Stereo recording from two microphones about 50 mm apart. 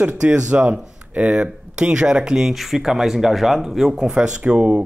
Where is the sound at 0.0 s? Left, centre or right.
Right.